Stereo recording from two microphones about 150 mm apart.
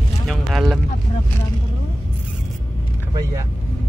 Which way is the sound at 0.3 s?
Centre (ahead or behind).